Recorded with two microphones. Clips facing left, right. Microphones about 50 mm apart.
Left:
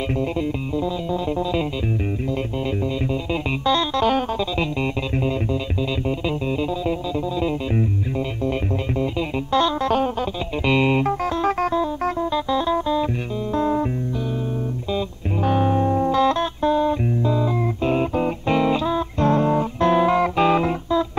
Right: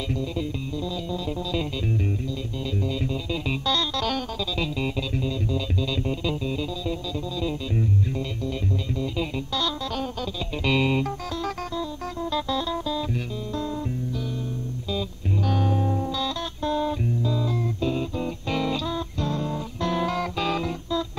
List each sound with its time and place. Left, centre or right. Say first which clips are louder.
3.6 s music: left 8 dB; left
10.6 s music: left 4 dB; left
12.4 s music: left 4 dB; centre
13.6 s music: left 10 dB; left
14.9 s music: left 2 dB; left
16.0 s music: left 10 dB; left
16.6 s music: left 6 dB; centre
17.2 s music: left 6 dB; left
17.8 s music: left 8 dB; left
18.5 s music: left 7 dB; left
19.2 s music: left 13 dB; left